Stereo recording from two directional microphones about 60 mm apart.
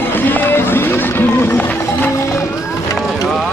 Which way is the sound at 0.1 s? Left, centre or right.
Left.